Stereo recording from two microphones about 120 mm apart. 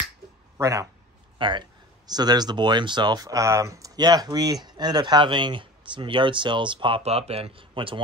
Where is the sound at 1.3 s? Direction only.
40° right (ahead or behind).